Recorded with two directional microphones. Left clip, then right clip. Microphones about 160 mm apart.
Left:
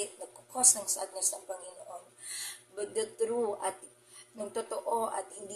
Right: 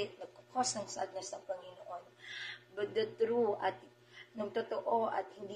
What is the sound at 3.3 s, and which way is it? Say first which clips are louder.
Speech: even; 25° left (ahead or behind).